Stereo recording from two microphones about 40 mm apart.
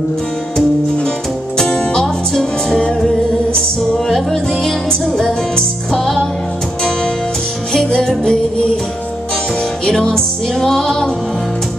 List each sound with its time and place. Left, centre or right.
1.6 s music: centre
3.9 s music: centre
5.9 s music: centre
8.2 s music: left
9.8 s music: centre